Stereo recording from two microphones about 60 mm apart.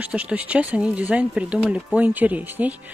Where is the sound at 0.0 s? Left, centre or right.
Right.